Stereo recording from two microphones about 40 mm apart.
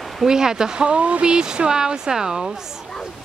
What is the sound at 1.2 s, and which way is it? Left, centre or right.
Speech, right.